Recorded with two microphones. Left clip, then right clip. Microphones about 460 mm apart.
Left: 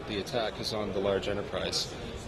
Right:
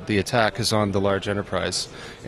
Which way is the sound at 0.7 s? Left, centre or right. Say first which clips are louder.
Right 8 dB; right.